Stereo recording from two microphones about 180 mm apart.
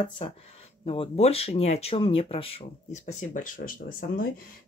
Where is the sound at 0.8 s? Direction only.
30° left (ahead or behind).